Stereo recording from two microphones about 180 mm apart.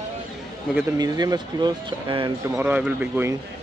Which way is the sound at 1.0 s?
20° right (ahead or behind).